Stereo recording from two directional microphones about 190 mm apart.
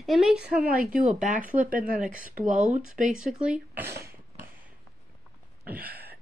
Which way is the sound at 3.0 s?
Centre (ahead or behind).